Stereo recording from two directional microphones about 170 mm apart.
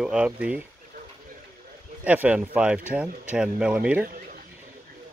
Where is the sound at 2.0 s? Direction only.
10° right (ahead or behind).